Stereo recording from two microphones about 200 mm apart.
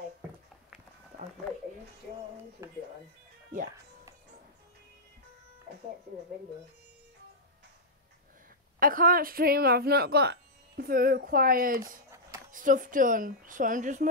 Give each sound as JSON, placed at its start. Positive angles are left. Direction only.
{"t": 8.7, "sound": "speech", "side_deg": -45}